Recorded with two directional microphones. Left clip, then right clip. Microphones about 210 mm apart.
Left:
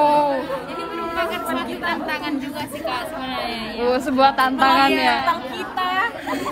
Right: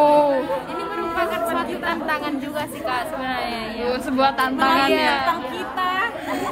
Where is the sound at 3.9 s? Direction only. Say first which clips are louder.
Left 4 dB; 5° right (ahead or behind).